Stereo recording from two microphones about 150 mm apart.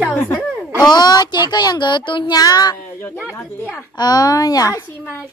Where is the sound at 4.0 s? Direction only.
25° left (ahead or behind).